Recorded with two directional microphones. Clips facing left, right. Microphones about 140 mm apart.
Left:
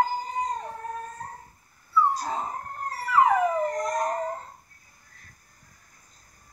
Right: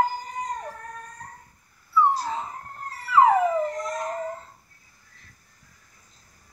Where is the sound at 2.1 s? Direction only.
45° left (ahead or behind).